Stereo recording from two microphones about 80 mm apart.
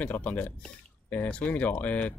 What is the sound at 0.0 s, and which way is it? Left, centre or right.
Speech, centre.